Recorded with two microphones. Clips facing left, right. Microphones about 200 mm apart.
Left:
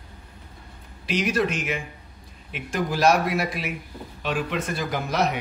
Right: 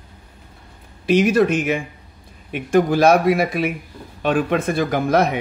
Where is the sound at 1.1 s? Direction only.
50° right (ahead or behind).